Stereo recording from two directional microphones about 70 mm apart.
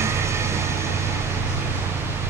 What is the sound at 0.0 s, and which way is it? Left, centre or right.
Vehicle, right.